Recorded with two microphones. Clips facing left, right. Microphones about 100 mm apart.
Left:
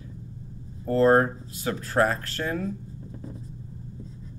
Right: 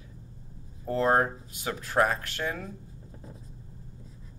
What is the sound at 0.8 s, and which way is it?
Speech, 15° right (ahead or behind).